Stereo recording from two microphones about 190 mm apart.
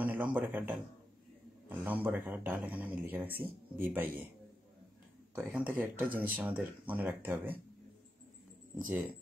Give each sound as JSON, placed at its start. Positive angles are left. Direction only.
{"t": 0.0, "sound": "a man's voice", "side_deg": -10}
{"t": 5.3, "sound": "speech", "side_deg": -5}
{"t": 8.7, "sound": "speech", "side_deg": -5}